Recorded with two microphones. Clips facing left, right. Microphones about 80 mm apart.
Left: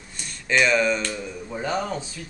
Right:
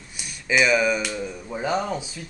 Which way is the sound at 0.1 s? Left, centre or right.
Centre.